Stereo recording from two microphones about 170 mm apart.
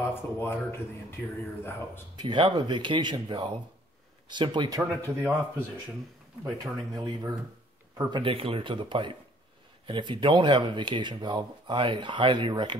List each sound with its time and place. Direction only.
0.1 s speech: 15° left (ahead or behind)
2.1 s speech: 25° right (ahead or behind)
6.4 s speech: 25° right (ahead or behind)